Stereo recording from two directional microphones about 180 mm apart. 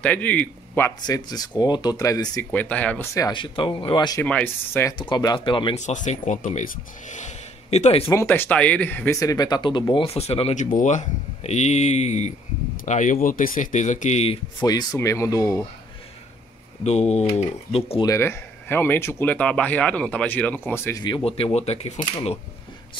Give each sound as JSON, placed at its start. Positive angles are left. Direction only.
{"t": 0.0, "sound": "speech", "side_deg": 10}
{"t": 3.2, "sound": "speech", "side_deg": 25}
{"t": 4.2, "sound": "speech", "side_deg": 10}
{"t": 5.1, "sound": "speech", "side_deg": 25}
{"t": 5.8, "sound": "speech", "side_deg": 40}
{"t": 8.1, "sound": "speech", "side_deg": 15}
{"t": 14.7, "sound": "speech", "side_deg": 20}
{"t": 16.8, "sound": "speech", "side_deg": 40}
{"t": 18.0, "sound": "speech", "side_deg": 15}
{"t": 21.0, "sound": "speech", "side_deg": 30}